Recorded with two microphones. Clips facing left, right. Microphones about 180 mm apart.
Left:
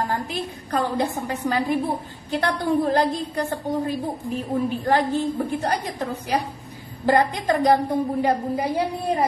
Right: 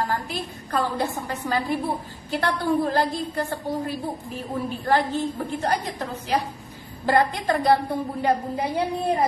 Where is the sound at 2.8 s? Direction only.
20° left (ahead or behind).